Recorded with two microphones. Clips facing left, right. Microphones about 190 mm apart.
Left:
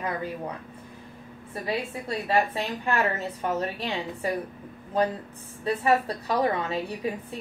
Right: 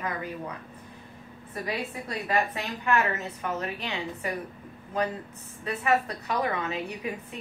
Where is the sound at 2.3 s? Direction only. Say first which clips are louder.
Left 3 dB; 30° left (ahead or behind).